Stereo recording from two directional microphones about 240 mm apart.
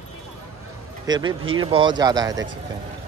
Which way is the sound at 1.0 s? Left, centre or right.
Centre.